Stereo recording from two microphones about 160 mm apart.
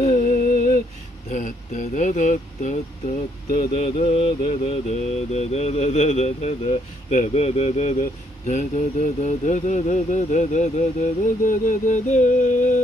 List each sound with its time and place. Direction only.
0.0 s a sound: 55° left (ahead or behind)
1.3 s speech: 50° left (ahead or behind)
3.7 s mantra: 40° left (ahead or behind)